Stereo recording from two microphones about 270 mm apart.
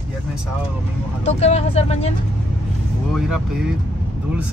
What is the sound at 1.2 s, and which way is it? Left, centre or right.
Speech, left.